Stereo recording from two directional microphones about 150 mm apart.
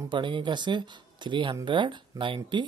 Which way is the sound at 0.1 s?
30° right (ahead or behind).